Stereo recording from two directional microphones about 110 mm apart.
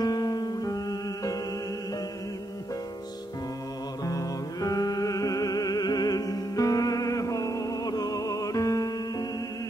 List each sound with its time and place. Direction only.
0.0 s music: 40° left (ahead or behind)
4.0 s music: 30° left (ahead or behind)